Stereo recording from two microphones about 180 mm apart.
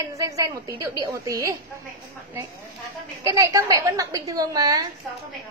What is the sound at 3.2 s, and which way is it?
A woman's voice, 20° right (ahead or behind).